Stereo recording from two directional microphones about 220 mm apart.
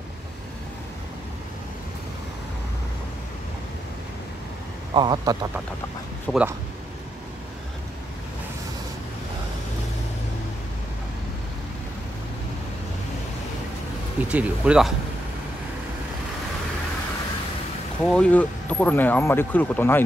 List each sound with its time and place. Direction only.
4.9 s speech: 20° right (ahead or behind)
6.3 s speech: 5° left (ahead or behind)
14.3 s speech: 5° right (ahead or behind)
18.0 s speech: 5° left (ahead or behind)